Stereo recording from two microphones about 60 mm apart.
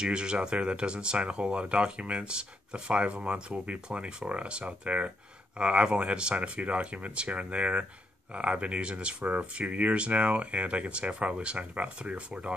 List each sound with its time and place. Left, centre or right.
0.0 s speech: centre